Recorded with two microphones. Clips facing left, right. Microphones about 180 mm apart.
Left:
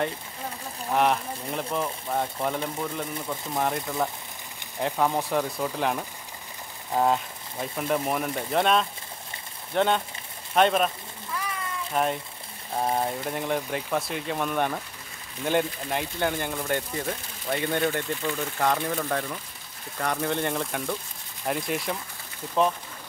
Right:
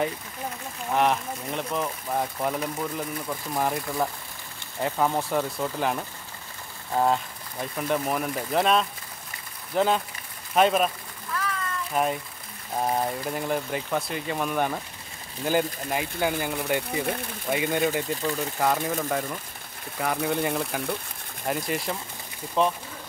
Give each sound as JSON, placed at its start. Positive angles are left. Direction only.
{"t": 0.9, "sound": "speech", "side_deg": 0}
{"t": 6.9, "sound": "a sound", "side_deg": 0}
{"t": 7.6, "sound": "speech", "side_deg": 0}
{"t": 11.9, "sound": "speech", "side_deg": -5}
{"t": 16.9, "sound": "speech", "side_deg": -65}
{"t": 17.5, "sound": "speech", "side_deg": -10}